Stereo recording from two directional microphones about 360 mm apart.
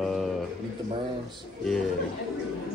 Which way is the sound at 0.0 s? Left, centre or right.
Centre.